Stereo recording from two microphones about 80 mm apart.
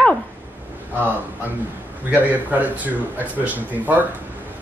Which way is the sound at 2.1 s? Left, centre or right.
Centre.